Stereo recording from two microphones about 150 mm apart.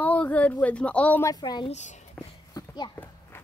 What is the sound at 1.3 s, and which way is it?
Speech, 25° left (ahead or behind).